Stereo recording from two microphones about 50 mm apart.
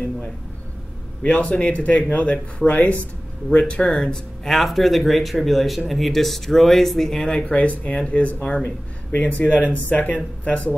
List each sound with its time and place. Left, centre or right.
1.2 s speech: left
3.5 s speech: left
4.5 s speech: centre
7.4 s speech: left